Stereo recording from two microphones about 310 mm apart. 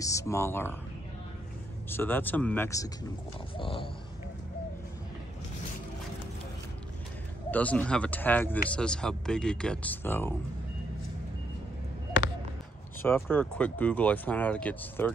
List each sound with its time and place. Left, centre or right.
0.0 s speech: centre
1.9 s speech: centre
7.5 s speech: centre
13.0 s speech: centre